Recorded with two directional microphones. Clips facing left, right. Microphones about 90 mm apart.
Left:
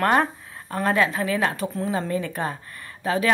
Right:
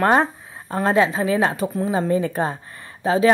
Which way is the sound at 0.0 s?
20° right (ahead or behind).